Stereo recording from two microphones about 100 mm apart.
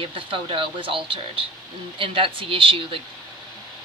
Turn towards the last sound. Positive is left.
turn(degrees=-65)  # may be behind; listen again after turning